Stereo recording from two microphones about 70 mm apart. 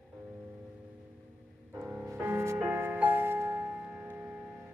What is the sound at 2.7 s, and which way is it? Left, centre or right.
Music, right.